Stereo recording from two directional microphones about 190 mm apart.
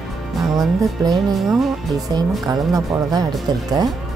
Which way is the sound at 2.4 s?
20° right (ahead or behind).